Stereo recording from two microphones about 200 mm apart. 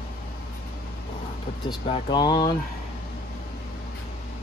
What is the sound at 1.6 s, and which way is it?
Speech, 25° left (ahead or behind).